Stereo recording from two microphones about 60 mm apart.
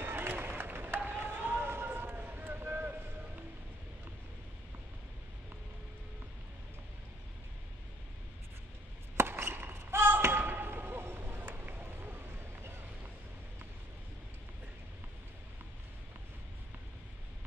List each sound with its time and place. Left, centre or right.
0.0 s run: right
9.1 s basketball bounce: right